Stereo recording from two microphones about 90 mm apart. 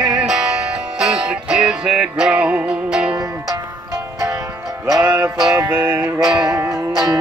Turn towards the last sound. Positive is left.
turn(degrees=-45)  # may be behind; listen again after turning